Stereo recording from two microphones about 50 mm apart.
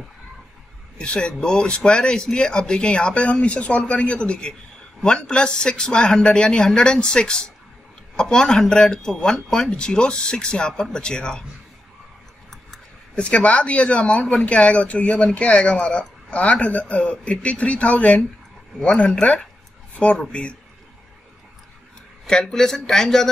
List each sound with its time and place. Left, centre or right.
0.9 s speech: centre
13.1 s speech: left
22.2 s speech: centre